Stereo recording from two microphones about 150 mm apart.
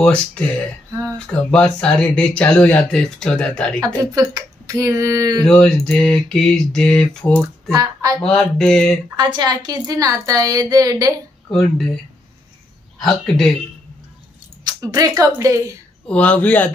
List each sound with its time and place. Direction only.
0.0 s speech: 5° left (ahead or behind)
3.8 s a woman's voice: 25° right (ahead or behind)
5.4 s a sound: 5° left (ahead or behind)
7.2 s typing: 5° left (ahead or behind)
7.7 s a woman's voice: 25° right (ahead or behind)
8.3 s a sound: 5° left (ahead or behind)
9.1 s a woman's voice: 30° right (ahead or behind)
11.5 s a sound: centre (ahead or behind)
14.6 s speech: 25° right (ahead or behind)
16.1 s speech: 10° left (ahead or behind)